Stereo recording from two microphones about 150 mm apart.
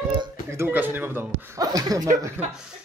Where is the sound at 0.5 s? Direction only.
15° right (ahead or behind).